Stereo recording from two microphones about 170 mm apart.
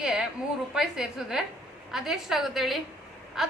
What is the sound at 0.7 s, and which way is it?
A woman's voice, 5° right (ahead or behind).